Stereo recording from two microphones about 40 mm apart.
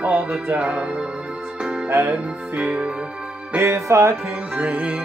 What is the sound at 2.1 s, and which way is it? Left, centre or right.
Music, right.